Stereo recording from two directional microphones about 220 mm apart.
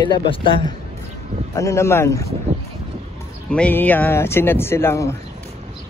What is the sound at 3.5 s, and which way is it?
Speech, 5° left (ahead or behind).